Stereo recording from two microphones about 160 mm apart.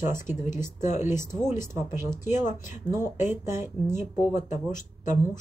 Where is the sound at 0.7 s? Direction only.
50° left (ahead or behind).